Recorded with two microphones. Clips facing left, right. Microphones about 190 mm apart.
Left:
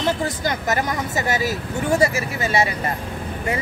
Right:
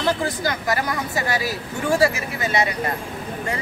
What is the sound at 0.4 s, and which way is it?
Speech, 20° left (ahead or behind).